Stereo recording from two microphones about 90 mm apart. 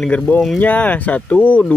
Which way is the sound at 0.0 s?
10° left (ahead or behind).